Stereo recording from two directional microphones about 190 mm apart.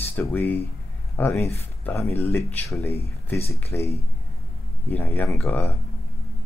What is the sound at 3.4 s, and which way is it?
Speech, 35° left (ahead or behind).